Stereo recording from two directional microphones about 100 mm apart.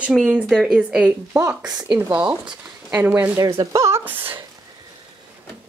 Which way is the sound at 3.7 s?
30° right (ahead or behind).